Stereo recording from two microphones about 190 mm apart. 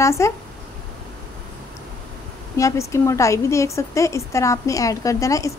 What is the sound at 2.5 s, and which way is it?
Speech, 15° left (ahead or behind).